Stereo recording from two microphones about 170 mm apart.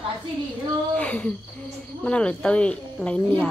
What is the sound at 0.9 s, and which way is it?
Speech, 5° left (ahead or behind).